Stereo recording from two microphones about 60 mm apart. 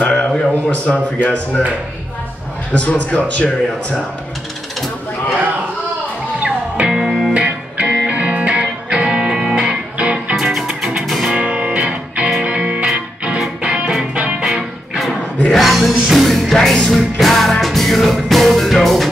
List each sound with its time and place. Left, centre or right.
0.0 s a sound: centre
0.4 s a man's voice: centre
2.7 s a man's voice: left
6.4 s music: centre
7.3 s music: right
10.4 s music: centre
11.3 s music: right
14.5 s music: centre